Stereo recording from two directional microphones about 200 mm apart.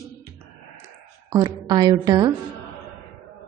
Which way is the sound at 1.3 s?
20° right (ahead or behind).